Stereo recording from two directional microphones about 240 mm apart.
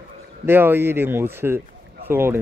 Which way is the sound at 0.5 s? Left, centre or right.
Centre.